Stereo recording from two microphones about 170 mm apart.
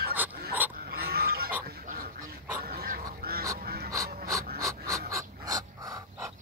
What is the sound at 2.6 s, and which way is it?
Goose, 60° right (ahead or behind).